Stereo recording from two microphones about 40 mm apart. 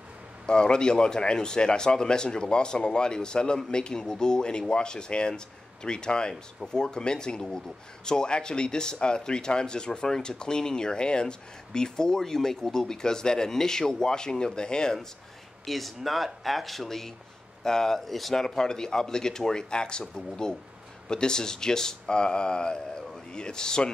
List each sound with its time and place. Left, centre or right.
0.5 s speech: left
15.6 s a man's voice: centre